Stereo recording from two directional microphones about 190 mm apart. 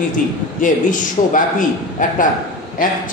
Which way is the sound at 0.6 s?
45° left (ahead or behind).